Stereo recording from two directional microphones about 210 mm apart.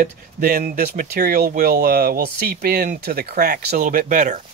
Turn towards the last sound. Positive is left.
turn(degrees=-40)  # may be behind; listen again after turning